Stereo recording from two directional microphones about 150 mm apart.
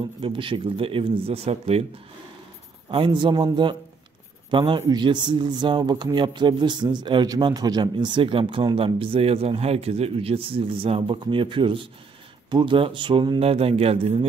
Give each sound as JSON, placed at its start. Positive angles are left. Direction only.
{"t": 0.2, "sound": "speech", "side_deg": -35}
{"t": 2.9, "sound": "speech", "side_deg": -35}